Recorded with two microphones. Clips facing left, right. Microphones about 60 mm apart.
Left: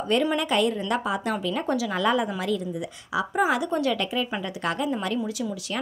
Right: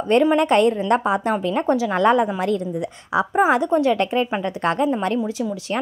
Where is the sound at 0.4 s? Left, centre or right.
Right.